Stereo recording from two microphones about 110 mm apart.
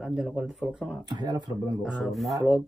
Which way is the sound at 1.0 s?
40° right (ahead or behind).